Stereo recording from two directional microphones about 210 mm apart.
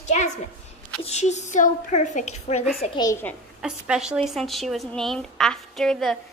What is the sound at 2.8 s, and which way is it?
Speech, 15° left (ahead or behind).